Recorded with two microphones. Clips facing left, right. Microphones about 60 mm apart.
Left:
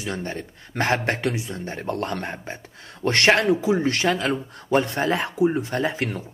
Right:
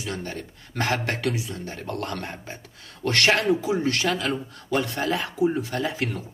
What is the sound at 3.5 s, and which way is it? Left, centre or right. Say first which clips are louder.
Speech: left 2 dB; left.